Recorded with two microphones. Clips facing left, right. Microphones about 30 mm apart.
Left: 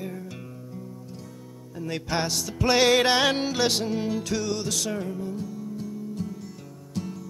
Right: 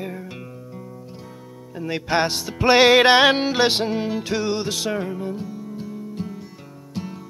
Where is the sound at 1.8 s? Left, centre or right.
Right.